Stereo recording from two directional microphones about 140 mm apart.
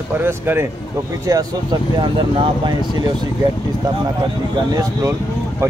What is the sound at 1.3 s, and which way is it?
Speech, 30° right (ahead or behind).